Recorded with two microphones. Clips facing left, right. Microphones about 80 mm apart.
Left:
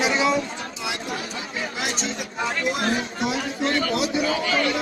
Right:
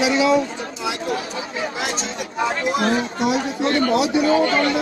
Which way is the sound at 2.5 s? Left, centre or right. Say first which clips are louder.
Right 3 dB; right.